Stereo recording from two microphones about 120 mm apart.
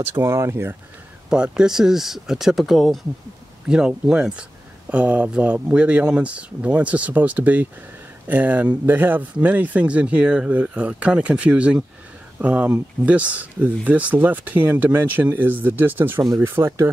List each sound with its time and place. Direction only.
0.0 s speech: 25° right (ahead or behind)
1.3 s speech: 5° right (ahead or behind)